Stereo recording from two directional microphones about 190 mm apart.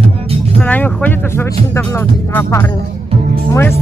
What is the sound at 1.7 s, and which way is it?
Speech, 15° left (ahead or behind).